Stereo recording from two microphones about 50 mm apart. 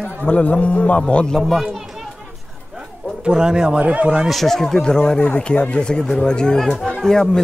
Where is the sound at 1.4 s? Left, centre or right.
Centre.